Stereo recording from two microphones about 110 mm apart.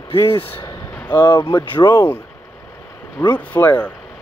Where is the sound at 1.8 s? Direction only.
35° left (ahead or behind).